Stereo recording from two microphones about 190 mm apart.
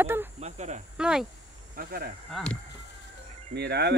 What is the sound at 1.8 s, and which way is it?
Speech, 50° right (ahead or behind).